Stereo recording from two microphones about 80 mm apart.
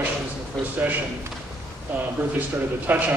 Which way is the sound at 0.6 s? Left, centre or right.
Centre.